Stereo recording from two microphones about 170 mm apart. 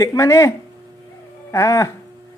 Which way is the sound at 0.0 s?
20° left (ahead or behind).